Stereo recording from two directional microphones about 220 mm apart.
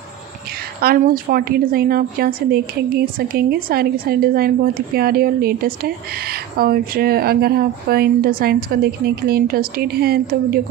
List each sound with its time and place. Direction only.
0.8 s speech: 40° right (ahead or behind)